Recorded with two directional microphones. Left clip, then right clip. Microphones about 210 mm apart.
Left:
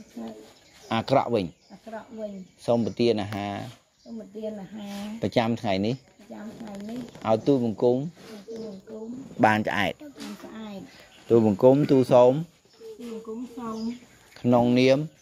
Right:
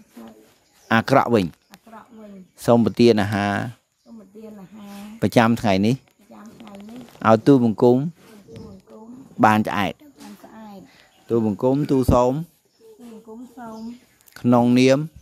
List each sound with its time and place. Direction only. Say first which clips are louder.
0.8 s speech: right 6 dB; 50° right (ahead or behind)
2.6 s speech: right 7 dB; 55° right (ahead or behind)
5.2 s speech: right 7 dB; 55° right (ahead or behind)
7.2 s speech: right 8 dB; 55° right (ahead or behind)
9.4 s speech: right 4 dB; 30° right (ahead or behind)
11.2 s speech: left 2 dB; 20° right (ahead or behind)
14.3 s speech: right 4 dB; 50° right (ahead or behind)